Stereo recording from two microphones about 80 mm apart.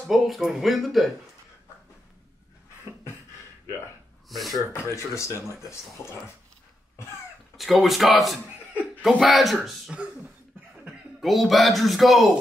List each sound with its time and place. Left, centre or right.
0.0 s speech: centre
4.3 s speech: centre
4.9 s speech: left
7.5 s speech: centre